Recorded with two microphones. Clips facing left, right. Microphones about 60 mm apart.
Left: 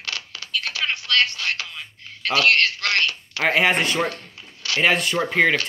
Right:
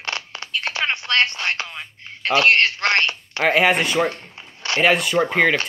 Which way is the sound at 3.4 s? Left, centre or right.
Centre.